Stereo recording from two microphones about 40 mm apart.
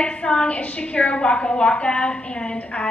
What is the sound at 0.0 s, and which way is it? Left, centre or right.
A woman's voice, left.